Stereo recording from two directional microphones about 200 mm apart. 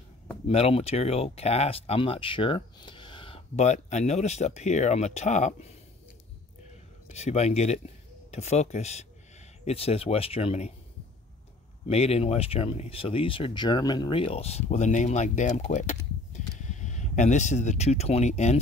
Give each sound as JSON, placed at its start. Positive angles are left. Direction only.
{"t": 0.5, "sound": "speech", "side_deg": 30}
{"t": 7.1, "sound": "speech", "side_deg": 35}
{"t": 11.9, "sound": "speech", "side_deg": 30}